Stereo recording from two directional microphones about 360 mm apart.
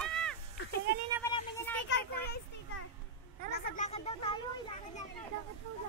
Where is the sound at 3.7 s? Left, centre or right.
Centre.